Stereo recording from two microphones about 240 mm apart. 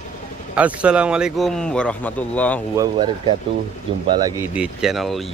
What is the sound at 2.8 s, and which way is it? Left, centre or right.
Speech, centre.